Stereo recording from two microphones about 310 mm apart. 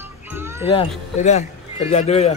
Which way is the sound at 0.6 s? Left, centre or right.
Centre.